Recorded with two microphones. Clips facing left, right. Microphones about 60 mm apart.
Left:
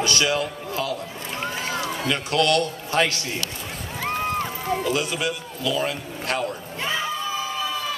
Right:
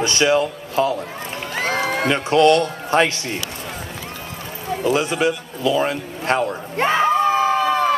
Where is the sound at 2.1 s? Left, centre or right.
Right.